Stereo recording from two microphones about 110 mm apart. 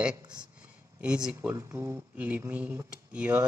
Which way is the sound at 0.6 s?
10° right (ahead or behind).